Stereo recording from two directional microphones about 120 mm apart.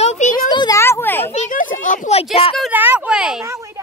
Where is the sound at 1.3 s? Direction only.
90° left; by 2.5 s 55° left (ahead or behind).